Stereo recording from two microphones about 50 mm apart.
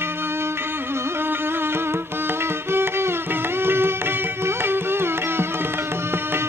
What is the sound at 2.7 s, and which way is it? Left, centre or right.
Music, right.